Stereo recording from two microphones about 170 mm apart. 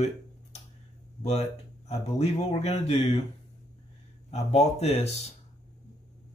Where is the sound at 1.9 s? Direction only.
40° left (ahead or behind).